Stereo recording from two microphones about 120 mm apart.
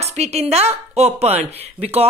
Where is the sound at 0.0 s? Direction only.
65° right (ahead or behind).